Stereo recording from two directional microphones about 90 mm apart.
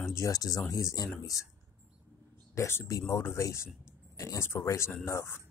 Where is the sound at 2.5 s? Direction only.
30° left (ahead or behind).